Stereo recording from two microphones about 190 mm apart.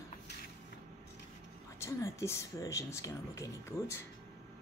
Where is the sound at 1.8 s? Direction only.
15° left (ahead or behind).